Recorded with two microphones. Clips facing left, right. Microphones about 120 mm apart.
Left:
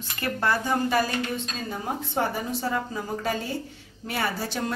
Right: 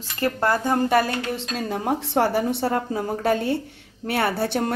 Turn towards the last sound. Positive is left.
turn(degrees=-60)  # may be behind; listen again after turning